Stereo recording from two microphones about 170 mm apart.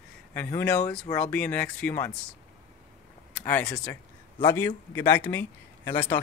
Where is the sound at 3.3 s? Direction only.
5° left (ahead or behind).